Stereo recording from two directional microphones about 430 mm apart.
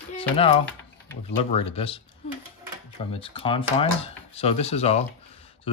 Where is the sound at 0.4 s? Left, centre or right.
Centre.